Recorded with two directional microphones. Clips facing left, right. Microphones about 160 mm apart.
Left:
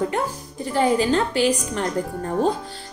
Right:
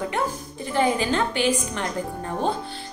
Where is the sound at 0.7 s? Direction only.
35° left (ahead or behind).